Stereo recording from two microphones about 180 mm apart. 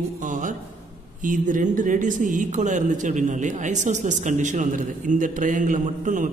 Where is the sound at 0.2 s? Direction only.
45° right (ahead or behind).